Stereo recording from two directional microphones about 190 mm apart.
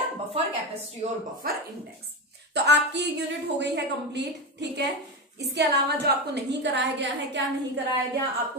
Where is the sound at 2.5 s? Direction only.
65° right (ahead or behind).